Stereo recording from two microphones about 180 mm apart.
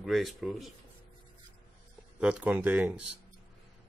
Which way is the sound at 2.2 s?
5° right (ahead or behind).